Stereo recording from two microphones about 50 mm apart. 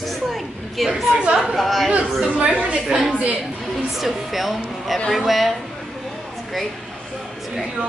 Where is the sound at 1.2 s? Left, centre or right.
Centre.